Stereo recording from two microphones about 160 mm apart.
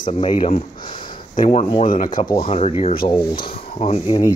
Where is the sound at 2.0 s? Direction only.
60° left (ahead or behind).